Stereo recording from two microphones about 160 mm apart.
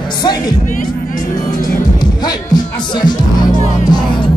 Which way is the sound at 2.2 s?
25° left (ahead or behind).